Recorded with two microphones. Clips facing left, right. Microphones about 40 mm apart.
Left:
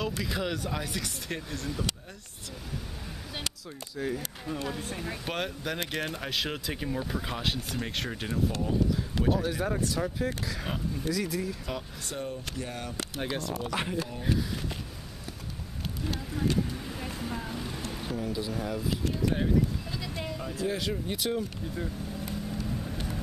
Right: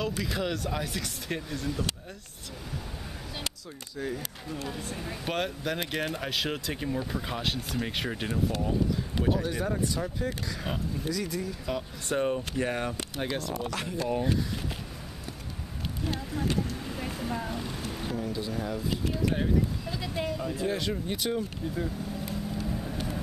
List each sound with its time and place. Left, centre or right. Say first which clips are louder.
0.0 s speech: right 1 dB; centre
4.0 s speech: left 1 dB; centre
4.5 s a woman's voice: left 3 dB; centre
5.2 s speech: right 5 dB; centre
12.1 s speech: right 8 dB; right
13.1 s speech: right 1 dB; centre
16.0 s speech: even; centre
22.6 s vehicle: right 2 dB; centre